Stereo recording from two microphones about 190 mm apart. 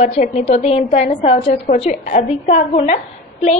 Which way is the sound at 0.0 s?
35° left (ahead or behind).